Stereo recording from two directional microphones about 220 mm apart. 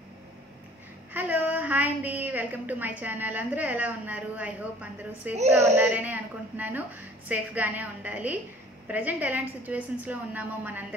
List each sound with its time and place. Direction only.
1.1 s a woman's voice: 10° right (ahead or behind)